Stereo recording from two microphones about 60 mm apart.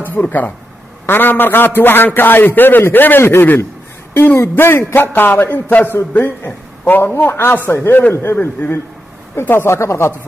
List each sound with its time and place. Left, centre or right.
0.2 s a man's voice: left